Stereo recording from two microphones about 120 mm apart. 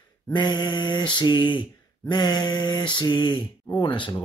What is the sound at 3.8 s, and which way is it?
Speech, 45° left (ahead or behind).